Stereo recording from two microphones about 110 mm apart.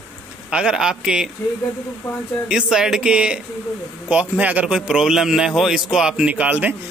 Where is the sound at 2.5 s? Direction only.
5° right (ahead or behind).